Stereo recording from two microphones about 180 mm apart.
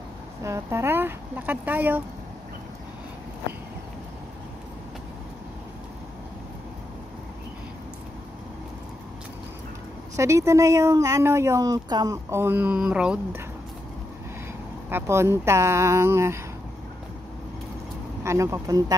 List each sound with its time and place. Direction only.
0.4 s speech: 15° right (ahead or behind)
10.1 s speech: 15° right (ahead or behind)
14.9 s speech: 15° right (ahead or behind)
18.2 s speech: 15° right (ahead or behind)